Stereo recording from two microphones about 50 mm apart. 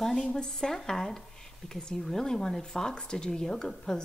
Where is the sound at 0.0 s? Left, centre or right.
Centre.